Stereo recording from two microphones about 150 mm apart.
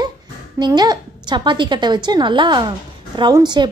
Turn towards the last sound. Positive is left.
turn(degrees=-30)  # may be behind; listen again after turning